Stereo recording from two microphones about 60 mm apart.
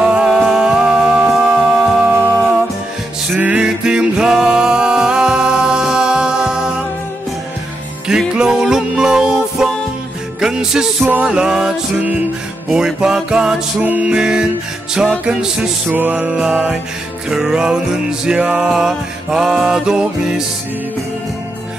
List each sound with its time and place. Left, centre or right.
0.0 s music: centre
1.3 s music: centre
3.3 s music: right
3.6 s music: centre
8.4 s music: centre
15.9 s music: right
16.3 s music: centre